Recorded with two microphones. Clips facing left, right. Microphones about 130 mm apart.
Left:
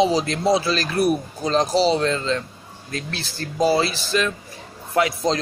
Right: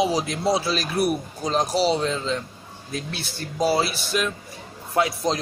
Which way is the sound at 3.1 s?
90° left.